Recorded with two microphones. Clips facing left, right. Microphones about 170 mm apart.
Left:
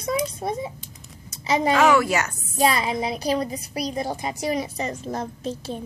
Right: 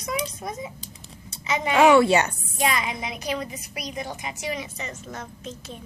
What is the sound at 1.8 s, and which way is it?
Speech, 30° right (ahead or behind).